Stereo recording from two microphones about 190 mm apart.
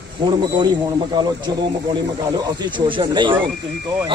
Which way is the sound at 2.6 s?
25° right (ahead or behind).